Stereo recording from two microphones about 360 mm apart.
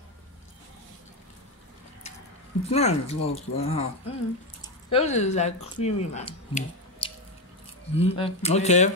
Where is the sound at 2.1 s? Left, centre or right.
Centre.